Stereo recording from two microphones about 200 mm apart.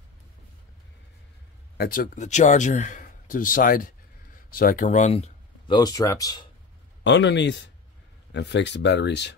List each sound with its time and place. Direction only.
1.8 s a man's voice: 45° left (ahead or behind); by 6.4 s 20° left (ahead or behind)
7.0 s speech: 65° left (ahead or behind)